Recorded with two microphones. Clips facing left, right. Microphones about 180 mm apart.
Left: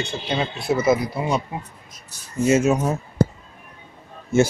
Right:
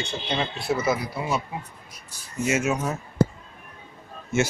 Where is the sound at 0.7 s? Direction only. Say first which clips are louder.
Left 6 dB; 20° left (ahead or behind).